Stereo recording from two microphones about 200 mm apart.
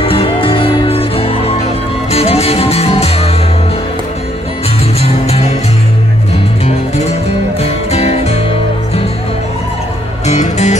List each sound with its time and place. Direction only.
0.0 s music: 25° left (ahead or behind)
5.0 s music: 30° left (ahead or behind)
6.6 s music: 30° left (ahead or behind)
10.2 s music: 35° left (ahead or behind)